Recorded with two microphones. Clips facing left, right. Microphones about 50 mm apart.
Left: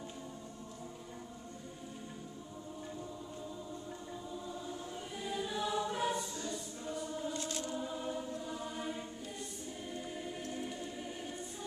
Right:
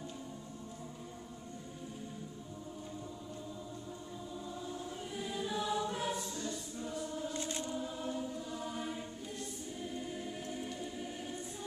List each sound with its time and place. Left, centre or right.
4.5 s choir: centre
7.3 s music: centre
7.7 s choir: centre